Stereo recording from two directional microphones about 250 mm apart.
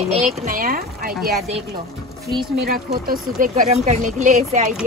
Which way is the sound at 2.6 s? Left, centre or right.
Right.